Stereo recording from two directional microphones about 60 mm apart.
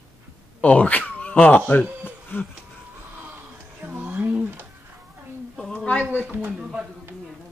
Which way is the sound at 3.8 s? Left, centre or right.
Right.